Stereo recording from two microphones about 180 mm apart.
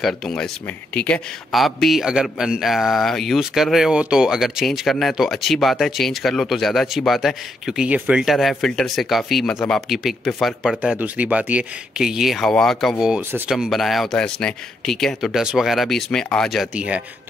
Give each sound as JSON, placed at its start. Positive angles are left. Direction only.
{"t": 0.0, "sound": "speech", "side_deg": 0}